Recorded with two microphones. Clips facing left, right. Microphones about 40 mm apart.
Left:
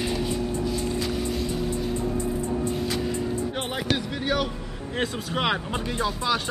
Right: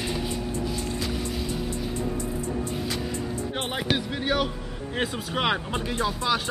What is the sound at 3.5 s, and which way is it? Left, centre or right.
Music, centre.